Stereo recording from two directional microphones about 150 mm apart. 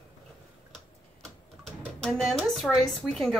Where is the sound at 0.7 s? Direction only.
5° left (ahead or behind).